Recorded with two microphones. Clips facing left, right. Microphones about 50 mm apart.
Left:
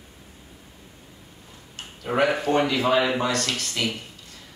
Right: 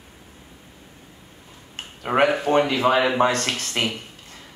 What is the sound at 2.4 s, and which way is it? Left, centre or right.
A man's voice, right.